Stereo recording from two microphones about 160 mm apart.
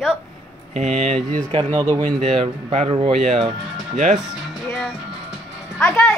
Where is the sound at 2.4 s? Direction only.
40° right (ahead or behind).